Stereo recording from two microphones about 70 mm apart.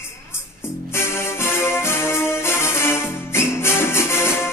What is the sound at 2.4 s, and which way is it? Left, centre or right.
Music, left.